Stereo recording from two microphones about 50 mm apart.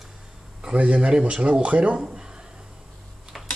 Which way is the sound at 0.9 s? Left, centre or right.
Centre.